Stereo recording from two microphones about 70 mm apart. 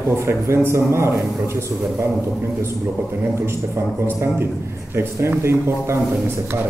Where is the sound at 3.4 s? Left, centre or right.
Right.